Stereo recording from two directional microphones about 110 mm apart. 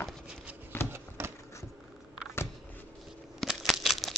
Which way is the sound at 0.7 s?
20° left (ahead or behind).